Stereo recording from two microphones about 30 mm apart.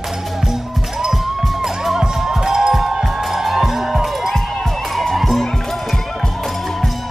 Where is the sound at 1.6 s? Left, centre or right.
Centre.